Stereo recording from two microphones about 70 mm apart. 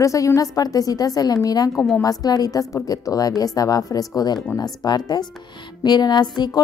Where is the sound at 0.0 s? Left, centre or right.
Left.